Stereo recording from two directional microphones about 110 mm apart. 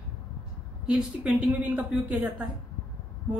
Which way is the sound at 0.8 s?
10° right (ahead or behind).